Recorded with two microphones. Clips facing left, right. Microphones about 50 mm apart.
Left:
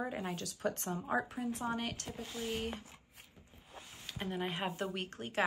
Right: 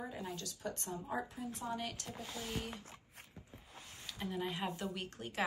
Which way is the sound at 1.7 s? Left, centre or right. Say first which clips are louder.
Left 3 dB; left.